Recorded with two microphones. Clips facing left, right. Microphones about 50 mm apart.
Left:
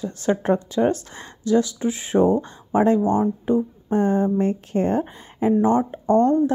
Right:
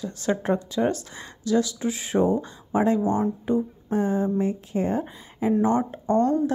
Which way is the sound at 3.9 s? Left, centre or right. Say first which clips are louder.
Left 4 dB; left.